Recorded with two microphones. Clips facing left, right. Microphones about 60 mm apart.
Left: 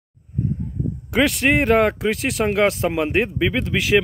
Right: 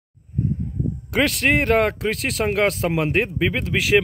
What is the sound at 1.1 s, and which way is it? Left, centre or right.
Speech, centre.